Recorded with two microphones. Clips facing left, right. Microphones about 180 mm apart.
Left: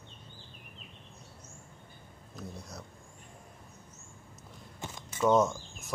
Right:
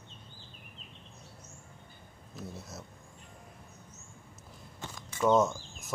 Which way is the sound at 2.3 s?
5° right (ahead or behind).